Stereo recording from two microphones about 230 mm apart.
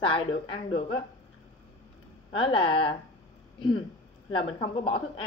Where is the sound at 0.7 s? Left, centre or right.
Left.